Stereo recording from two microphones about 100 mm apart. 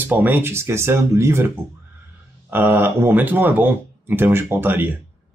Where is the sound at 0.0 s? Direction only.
20° right (ahead or behind).